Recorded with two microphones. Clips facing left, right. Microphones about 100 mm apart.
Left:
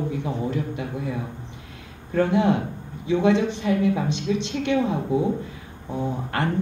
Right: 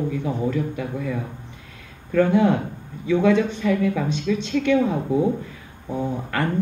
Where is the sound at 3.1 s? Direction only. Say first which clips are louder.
Right 2 dB; 45° right (ahead or behind).